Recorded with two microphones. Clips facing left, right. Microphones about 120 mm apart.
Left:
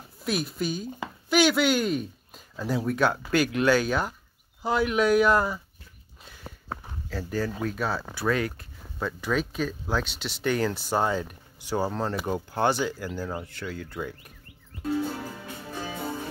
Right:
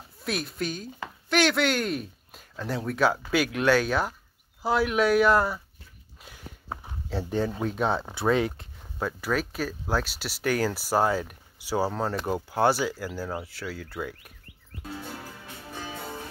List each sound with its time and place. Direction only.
0.2 s speech: centre (ahead or behind)
6.2 s walk: 10° right (ahead or behind)
7.1 s speech: 25° right (ahead or behind)
8.5 s speech: 10° right (ahead or behind)